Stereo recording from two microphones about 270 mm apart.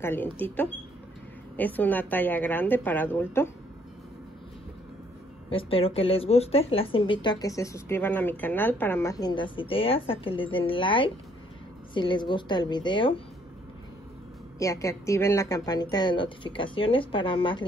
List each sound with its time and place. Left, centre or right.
0.0 s a woman's voice: centre
5.5 s a woman's voice: left
14.6 s a woman's voice: centre